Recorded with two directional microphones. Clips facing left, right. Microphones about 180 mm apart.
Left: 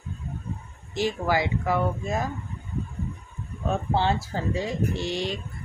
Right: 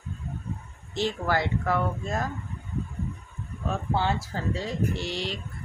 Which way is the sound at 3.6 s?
25° left (ahead or behind).